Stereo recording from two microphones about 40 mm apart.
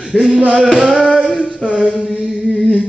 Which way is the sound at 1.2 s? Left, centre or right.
Left.